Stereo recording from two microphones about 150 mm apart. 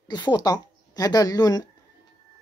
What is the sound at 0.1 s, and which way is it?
Speech, 30° left (ahead or behind).